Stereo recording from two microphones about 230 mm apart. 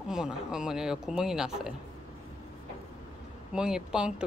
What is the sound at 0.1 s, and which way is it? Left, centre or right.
Speech, centre.